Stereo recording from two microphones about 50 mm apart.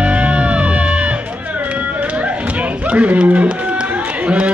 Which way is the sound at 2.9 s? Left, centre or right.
Right.